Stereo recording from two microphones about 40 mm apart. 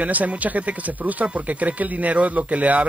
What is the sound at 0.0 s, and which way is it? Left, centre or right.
Speech, right.